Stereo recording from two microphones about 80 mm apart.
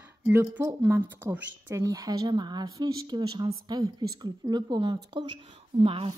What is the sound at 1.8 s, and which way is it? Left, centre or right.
Speech, right.